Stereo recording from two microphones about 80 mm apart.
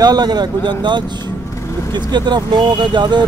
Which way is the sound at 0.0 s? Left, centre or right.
Right.